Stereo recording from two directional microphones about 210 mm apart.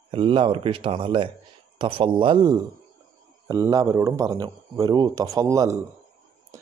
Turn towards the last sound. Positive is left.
turn(degrees=-15)  # may be behind; listen again after turning